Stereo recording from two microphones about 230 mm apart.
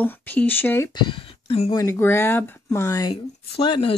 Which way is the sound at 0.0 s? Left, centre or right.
Centre.